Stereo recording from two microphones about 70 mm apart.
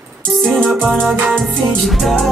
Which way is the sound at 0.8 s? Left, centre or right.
Right.